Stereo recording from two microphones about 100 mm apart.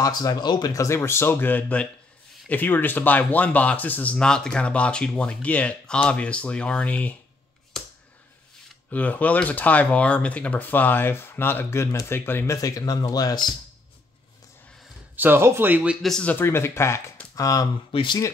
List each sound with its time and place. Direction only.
0.0 s speech: 40° left (ahead or behind)
0.7 s speech: 25° left (ahead or behind)
8.9 s speech: 15° left (ahead or behind)
12.5 s speech: 35° left (ahead or behind)
15.1 s speech: 20° right (ahead or behind)
16.0 s speech: 5° left (ahead or behind)
16.3 s speech: 20° left (ahead or behind)
17.9 s speech: 50° left (ahead or behind)